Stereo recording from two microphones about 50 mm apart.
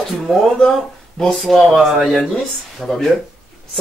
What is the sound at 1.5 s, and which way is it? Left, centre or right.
Speech, centre.